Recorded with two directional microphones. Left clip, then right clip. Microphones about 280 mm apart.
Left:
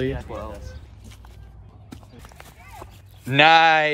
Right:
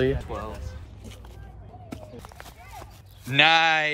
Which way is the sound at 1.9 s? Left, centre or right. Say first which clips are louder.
Right 3 dB; centre.